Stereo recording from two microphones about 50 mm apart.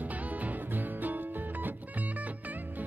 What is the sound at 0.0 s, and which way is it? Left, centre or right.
Music, right.